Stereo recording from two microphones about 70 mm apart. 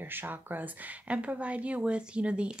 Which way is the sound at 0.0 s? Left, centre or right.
Right.